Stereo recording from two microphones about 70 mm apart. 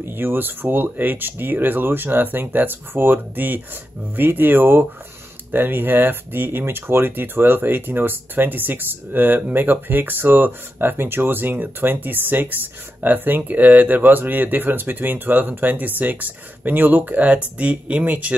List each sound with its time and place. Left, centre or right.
0.0 s speech: right